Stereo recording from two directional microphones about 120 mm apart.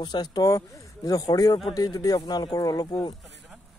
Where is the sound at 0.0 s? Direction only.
40° left (ahead or behind).